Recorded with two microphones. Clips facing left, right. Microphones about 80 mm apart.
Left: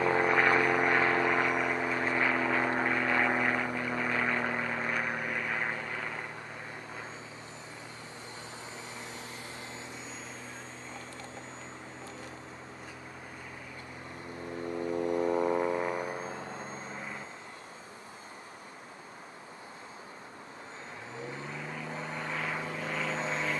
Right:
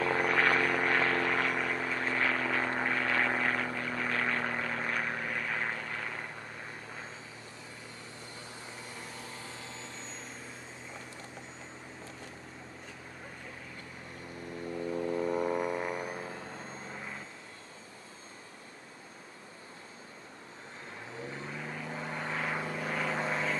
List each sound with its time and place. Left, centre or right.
0.0 s vehicle: centre
8.9 s vehicle: left
14.9 s vehicle: centre
21.5 s vehicle: centre